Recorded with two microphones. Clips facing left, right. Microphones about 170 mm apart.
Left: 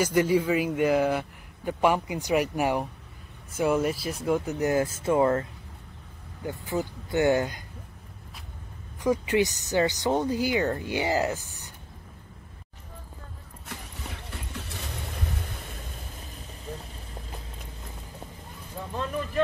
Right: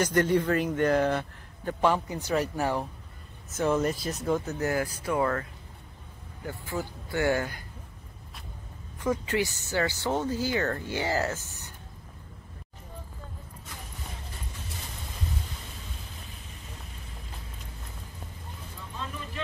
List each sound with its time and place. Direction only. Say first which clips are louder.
0.0 s a man's voice: left 1 dB; 10° left (ahead or behind)
9.0 s a man's voice: left 4 dB; 15° left (ahead or behind)
13.7 s music: left 5 dB; 70° left (ahead or behind)